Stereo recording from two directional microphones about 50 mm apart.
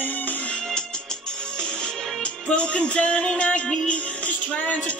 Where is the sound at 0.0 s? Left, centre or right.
Left.